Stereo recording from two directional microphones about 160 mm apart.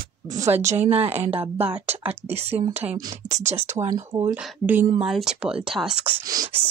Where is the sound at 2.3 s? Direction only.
40° right (ahead or behind).